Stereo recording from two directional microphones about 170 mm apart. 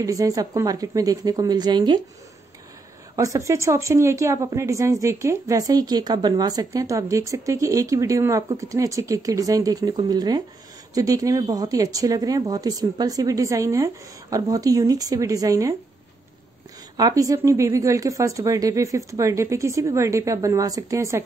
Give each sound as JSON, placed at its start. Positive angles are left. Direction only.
{"t": 0.0, "sound": "a woman's voice", "side_deg": -20}
{"t": 3.2, "sound": "a woman's voice", "side_deg": -20}
{"t": 16.9, "sound": "a woman's voice", "side_deg": -20}